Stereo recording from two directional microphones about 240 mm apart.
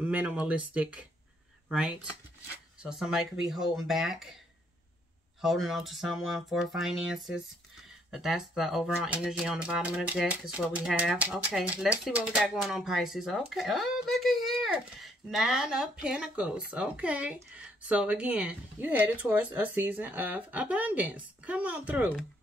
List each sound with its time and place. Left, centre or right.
0.0 s speech: centre
5.4 s speech: centre